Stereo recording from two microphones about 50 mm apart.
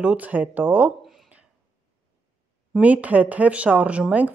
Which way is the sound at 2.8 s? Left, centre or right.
Right.